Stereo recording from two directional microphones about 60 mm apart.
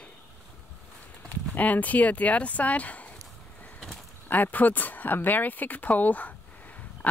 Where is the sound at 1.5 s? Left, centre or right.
Left.